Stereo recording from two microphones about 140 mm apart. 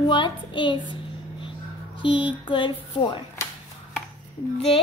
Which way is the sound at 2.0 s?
35° left (ahead or behind).